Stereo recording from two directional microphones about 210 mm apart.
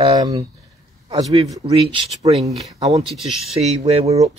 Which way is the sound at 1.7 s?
25° right (ahead or behind).